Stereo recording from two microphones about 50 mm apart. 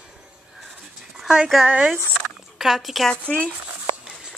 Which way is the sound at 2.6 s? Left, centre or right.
Centre.